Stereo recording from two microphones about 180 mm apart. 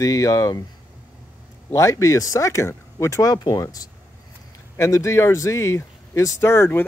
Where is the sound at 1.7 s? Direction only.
15° left (ahead or behind).